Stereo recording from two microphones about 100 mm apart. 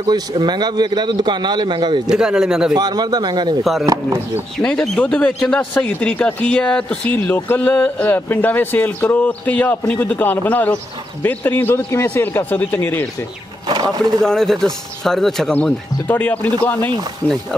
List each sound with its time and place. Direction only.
0.4 s speech: 45° right (ahead or behind)
2.0 s speech: 5° right (ahead or behind)
2.7 s speech: 40° right (ahead or behind)
3.8 s speech: 35° right (ahead or behind)
4.6 s speech: 5° left (ahead or behind)
13.7 s speech: 45° right (ahead or behind)
14.2 s a man's voice: 5° left (ahead or behind)
15.5 s speech: 20° left (ahead or behind)